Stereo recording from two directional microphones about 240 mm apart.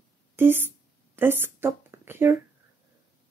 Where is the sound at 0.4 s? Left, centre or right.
Centre.